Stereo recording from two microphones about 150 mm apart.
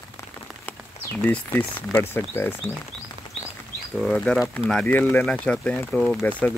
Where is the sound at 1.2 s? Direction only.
10° left (ahead or behind).